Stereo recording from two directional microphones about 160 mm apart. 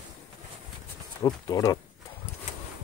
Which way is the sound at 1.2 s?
20° left (ahead or behind).